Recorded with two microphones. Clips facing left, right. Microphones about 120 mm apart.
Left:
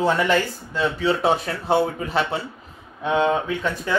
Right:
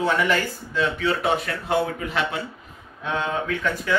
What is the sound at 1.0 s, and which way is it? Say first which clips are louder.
Speech: left 6 dB; 30° left (ahead or behind).